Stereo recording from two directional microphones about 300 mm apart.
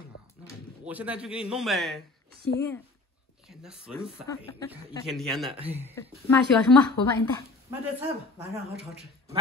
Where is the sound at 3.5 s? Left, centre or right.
Centre.